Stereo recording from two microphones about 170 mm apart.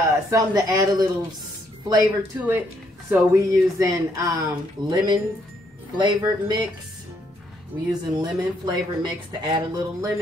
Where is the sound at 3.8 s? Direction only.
20° right (ahead or behind).